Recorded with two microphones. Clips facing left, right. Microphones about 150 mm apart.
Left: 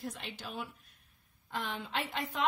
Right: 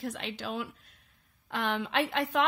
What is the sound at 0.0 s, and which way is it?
A woman's voice, 90° right.